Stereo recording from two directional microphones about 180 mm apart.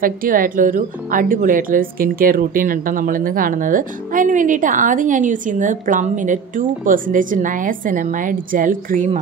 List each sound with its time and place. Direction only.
0.0 s speech: 50° right (ahead or behind)